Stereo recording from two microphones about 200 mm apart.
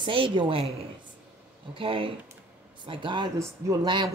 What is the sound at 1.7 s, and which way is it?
Speech, 25° right (ahead or behind).